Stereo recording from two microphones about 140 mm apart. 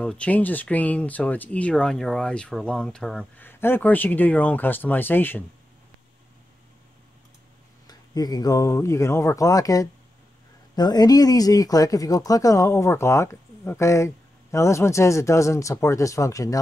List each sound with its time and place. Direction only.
0.0 s speech: 5° left (ahead or behind)
3.3 s speech: 15° left (ahead or behind)
7.8 s speech: 30° left (ahead or behind)